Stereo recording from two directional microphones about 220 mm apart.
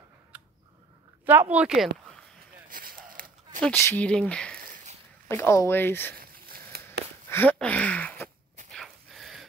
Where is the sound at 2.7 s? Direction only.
40° right (ahead or behind).